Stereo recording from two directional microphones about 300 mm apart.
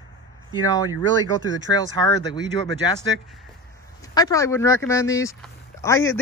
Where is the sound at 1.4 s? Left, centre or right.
Right.